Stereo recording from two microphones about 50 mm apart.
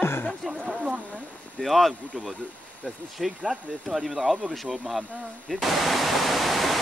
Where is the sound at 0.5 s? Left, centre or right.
Centre.